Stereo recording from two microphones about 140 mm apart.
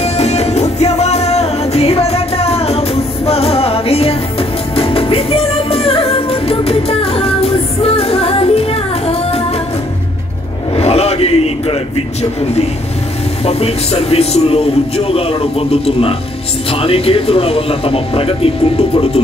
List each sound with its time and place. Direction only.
0.0 s music: 50° left (ahead or behind)
10.8 s a sound: 50° left (ahead or behind)
13.5 s speech: 45° left (ahead or behind)